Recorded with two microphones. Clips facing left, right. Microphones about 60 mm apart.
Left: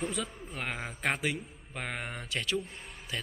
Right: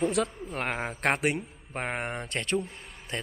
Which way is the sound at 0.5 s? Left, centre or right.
Right.